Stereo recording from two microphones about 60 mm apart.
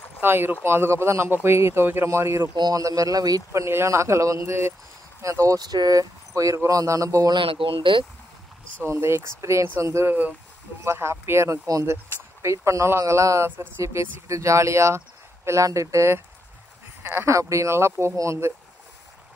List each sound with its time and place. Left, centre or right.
0.2 s speech: right
2.7 s speech: right
3.6 s speech: right
5.2 s speech: right
8.8 s speech: right
17.0 s speech: right
17.3 s speech: right